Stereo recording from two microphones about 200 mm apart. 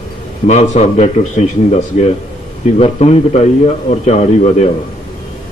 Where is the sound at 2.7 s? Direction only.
30° left (ahead or behind).